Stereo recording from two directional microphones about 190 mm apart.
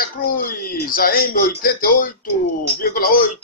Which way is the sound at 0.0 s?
50° left (ahead or behind).